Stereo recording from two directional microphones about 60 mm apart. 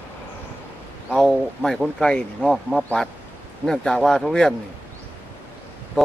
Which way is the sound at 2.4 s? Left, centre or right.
Centre.